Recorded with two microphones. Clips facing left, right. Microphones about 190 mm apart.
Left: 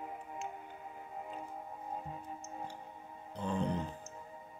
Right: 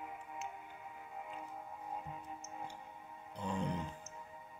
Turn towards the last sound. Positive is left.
turn(degrees=-10)  # may be behind; listen again after turning